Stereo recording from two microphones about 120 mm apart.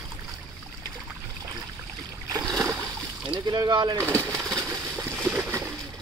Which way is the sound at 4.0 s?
25° right (ahead or behind).